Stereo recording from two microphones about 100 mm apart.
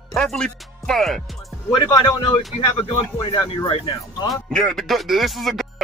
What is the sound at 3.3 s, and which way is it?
Speech, 60° left (ahead or behind).